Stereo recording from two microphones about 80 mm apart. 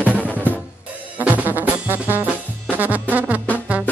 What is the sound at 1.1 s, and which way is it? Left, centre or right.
Music, right.